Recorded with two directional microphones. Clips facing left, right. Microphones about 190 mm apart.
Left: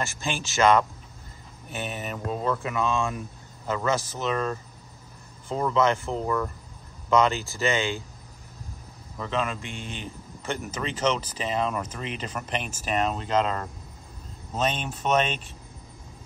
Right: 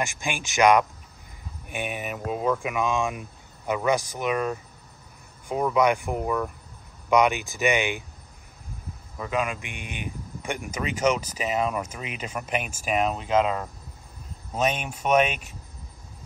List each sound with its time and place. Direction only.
0.0 s speech: 15° right (ahead or behind)
9.2 s speech: 10° right (ahead or behind)